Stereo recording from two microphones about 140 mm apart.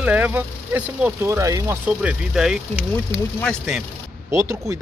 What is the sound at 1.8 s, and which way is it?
Speech, 5° right (ahead or behind).